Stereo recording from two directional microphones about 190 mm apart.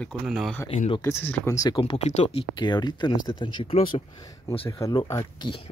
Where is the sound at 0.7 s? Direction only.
30° left (ahead or behind).